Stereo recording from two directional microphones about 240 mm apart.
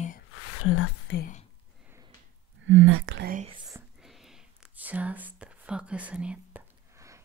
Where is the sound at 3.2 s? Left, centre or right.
Right.